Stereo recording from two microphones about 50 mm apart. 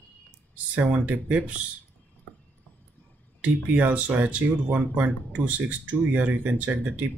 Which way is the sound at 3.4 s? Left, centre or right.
Right.